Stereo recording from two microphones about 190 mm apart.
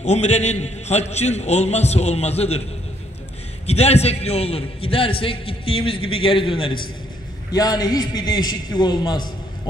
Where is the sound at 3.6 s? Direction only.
35° left (ahead or behind).